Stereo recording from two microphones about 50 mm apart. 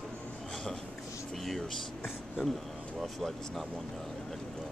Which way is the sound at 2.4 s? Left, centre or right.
Centre.